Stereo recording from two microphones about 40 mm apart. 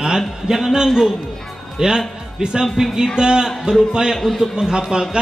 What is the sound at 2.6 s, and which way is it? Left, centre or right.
A man's voice, centre.